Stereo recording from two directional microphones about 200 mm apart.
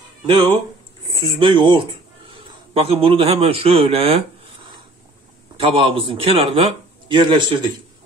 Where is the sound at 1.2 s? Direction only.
25° right (ahead or behind).